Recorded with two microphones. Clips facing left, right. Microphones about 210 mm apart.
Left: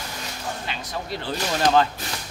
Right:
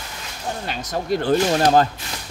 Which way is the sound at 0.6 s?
45° right (ahead or behind).